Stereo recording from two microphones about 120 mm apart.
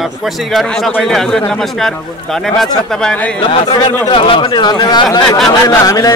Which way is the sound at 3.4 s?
40° left (ahead or behind).